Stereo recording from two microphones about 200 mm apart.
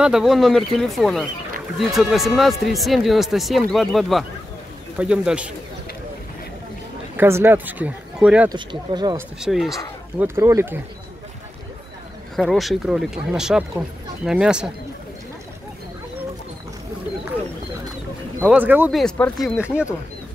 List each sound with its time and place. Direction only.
0.0 s speech: 5° right (ahead or behind)
7.2 s speech: 10° right (ahead or behind)
8.5 s speech: 20° right (ahead or behind)
9.4 s speech: centre (ahead or behind)
10.1 s speech: 10° right (ahead or behind)
12.4 s speech: centre (ahead or behind)
18.5 s speech: 10° right (ahead or behind)